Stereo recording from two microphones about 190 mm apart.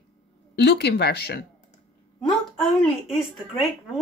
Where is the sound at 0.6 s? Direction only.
60° left (ahead or behind).